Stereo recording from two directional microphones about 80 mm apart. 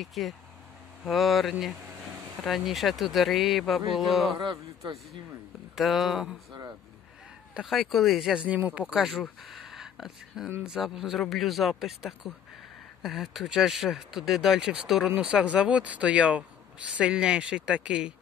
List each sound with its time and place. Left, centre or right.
0.0 s speech: centre
4.4 s a man's voice: right
5.8 s speech: centre
7.6 s speech: centre
8.4 s speech: centre
8.8 s speech: centre